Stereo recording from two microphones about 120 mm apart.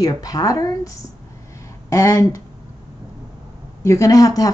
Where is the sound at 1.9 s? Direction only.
30° left (ahead or behind).